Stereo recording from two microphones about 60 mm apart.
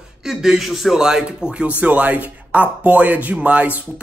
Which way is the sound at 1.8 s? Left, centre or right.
Right.